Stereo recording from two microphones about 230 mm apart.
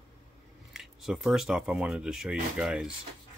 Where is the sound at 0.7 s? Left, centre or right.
Centre.